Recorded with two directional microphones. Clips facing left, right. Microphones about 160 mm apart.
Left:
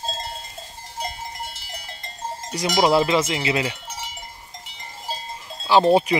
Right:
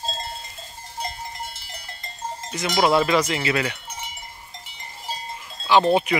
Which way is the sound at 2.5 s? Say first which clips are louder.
Left 1 dB; 35° left (ahead or behind).